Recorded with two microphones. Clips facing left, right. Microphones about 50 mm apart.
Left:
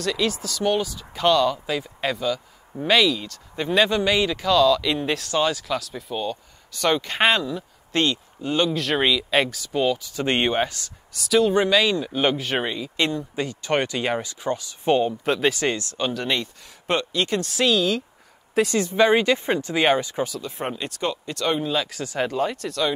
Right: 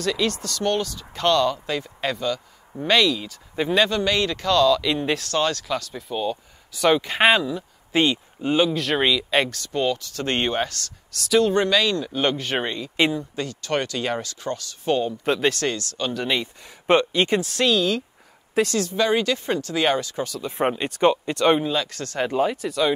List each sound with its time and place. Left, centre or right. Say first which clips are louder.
0.0 s speech: even; centre
3.8 s speech: left 1 dB; centre
13.4 s speech: left 4 dB; centre
15.2 s speech: even; centre
15.6 s speech: left 1 dB; left
16.1 s speech: right 2 dB; centre
16.8 s speech: right 5 dB; right
17.4 s speech: even; centre
18.7 s speech: left 3 dB; centre
20.4 s speech: right 6 dB; centre
21.6 s speech: even; centre
22.3 s speech: right 3 dB; centre